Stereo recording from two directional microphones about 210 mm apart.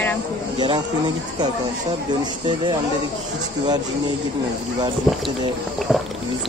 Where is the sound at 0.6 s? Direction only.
20° right (ahead or behind).